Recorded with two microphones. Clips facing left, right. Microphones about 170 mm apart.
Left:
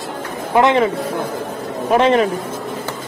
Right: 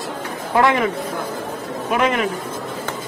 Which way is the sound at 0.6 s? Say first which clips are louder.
Left 3 dB; 25° left (ahead or behind).